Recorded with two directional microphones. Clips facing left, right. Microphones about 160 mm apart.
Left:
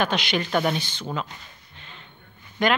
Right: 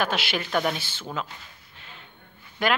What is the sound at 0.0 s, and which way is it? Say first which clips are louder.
A woman's voice: left 3 dB; 5° right (ahead or behind).